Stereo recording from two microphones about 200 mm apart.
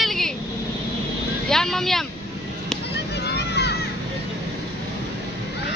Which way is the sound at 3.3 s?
55° left (ahead or behind).